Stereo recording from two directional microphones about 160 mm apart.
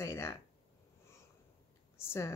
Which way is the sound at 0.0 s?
15° left (ahead or behind).